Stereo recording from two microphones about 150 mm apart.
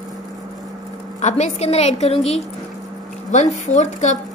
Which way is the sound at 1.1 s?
50° left (ahead or behind).